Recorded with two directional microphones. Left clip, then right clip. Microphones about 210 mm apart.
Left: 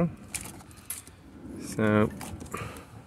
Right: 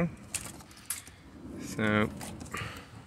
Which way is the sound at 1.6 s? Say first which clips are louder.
Left 4 dB; 30° left (ahead or behind).